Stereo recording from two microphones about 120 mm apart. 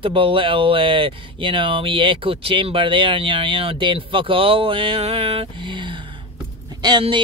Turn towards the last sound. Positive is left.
turn(degrees=-40)  # may be behind; listen again after turning